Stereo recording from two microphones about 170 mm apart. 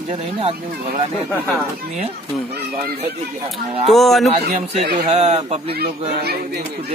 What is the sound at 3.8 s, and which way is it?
Speech, centre (ahead or behind).